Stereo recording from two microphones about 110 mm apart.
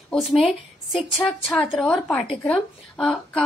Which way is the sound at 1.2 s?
20° left (ahead or behind).